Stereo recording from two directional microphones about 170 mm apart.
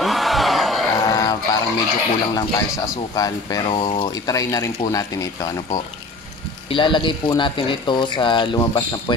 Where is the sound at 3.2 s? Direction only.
25° left (ahead or behind).